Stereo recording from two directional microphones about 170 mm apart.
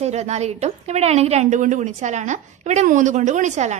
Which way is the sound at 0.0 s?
40° right (ahead or behind).